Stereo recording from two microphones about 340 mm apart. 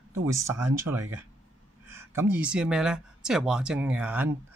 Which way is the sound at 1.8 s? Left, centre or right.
Centre.